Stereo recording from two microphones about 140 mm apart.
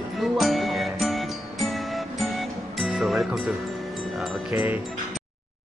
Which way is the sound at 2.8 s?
Centre (ahead or behind).